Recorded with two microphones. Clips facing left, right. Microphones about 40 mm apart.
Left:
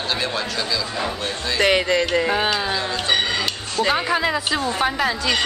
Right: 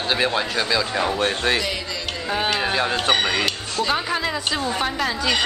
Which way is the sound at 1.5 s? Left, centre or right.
Left.